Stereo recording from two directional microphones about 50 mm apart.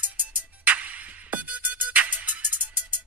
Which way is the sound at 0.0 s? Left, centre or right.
Right.